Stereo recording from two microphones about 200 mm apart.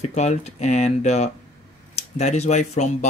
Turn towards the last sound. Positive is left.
turn(degrees=35)  # may be behind; listen again after turning